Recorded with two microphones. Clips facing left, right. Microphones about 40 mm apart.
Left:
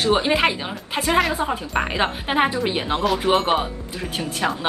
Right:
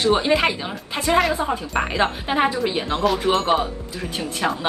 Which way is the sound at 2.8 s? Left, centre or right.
Left.